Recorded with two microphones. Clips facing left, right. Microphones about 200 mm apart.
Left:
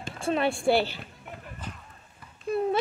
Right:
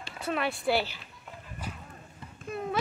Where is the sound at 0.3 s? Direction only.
25° left (ahead or behind).